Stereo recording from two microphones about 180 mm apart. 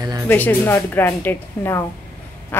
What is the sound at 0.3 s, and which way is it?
Speech, 10° left (ahead or behind).